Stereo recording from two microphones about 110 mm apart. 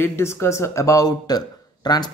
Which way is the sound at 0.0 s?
25° left (ahead or behind).